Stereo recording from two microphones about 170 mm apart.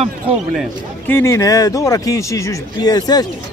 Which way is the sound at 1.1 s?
15° left (ahead or behind).